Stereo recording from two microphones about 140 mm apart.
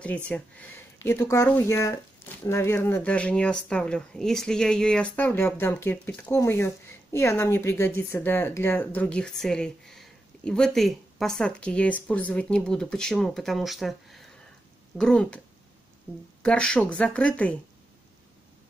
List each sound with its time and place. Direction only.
0.0 s a woman's voice: 10° left (ahead or behind)
16.4 s a woman's voice: 5° left (ahead or behind)